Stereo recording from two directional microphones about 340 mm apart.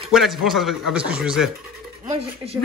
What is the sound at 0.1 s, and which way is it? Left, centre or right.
Speech, centre.